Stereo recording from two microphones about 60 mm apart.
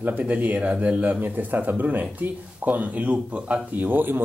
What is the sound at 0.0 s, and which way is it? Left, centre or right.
Speech, right.